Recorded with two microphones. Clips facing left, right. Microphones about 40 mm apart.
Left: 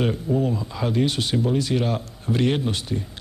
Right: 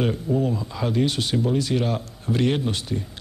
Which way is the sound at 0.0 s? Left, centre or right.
Centre.